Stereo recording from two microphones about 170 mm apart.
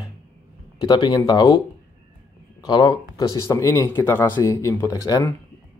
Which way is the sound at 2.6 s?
25° left (ahead or behind).